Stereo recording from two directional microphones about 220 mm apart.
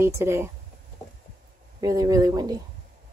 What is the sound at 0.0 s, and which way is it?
Speech, 10° right (ahead or behind).